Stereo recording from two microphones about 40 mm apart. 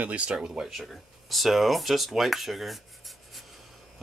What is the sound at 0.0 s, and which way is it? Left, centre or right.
Speech, right.